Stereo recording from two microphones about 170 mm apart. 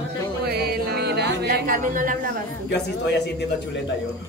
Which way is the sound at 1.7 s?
50° right (ahead or behind).